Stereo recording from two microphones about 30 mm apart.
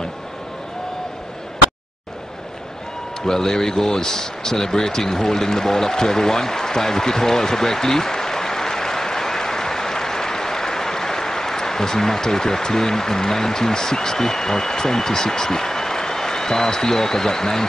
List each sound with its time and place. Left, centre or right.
3.3 s speech: centre